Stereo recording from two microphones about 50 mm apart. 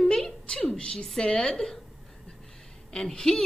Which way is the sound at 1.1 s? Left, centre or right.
Centre.